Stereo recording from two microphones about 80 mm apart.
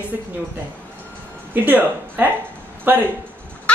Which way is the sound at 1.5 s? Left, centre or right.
Right.